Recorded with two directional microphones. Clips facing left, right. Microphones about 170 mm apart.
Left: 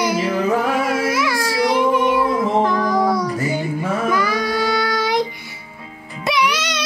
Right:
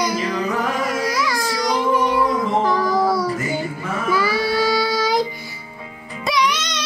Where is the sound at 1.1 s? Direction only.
5° left (ahead or behind).